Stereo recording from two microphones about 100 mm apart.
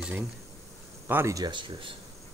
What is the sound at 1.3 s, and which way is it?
Speech, 45° right (ahead or behind).